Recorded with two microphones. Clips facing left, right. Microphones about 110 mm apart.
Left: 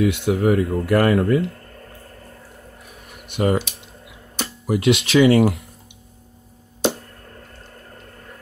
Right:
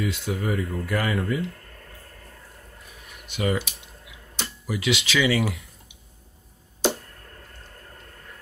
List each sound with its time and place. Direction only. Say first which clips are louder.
0.0 s speech: left 9 dB; 70° left (ahead or behind)
3.1 s a sound: left 6 dB; 55° left (ahead or behind)
4.4 s speech: left 8 dB; 55° left (ahead or behind)